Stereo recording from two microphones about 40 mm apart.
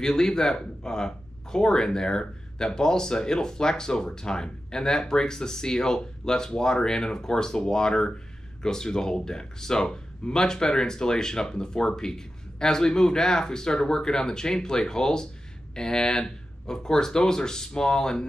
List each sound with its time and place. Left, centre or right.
0.0 s speech: centre